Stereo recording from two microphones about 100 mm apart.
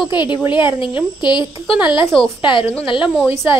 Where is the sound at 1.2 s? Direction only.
50° left (ahead or behind).